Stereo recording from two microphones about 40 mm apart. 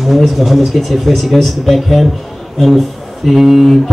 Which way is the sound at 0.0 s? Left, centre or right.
Centre.